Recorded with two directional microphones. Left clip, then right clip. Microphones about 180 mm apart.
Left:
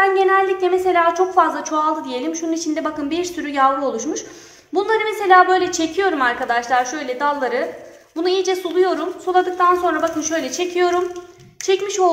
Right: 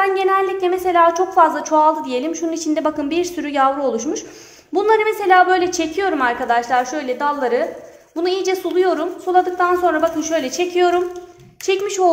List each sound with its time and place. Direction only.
0.0 s a woman's voice: 50° right (ahead or behind)